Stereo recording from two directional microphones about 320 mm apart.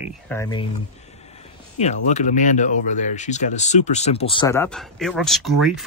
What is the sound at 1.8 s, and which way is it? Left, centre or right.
Speech, left.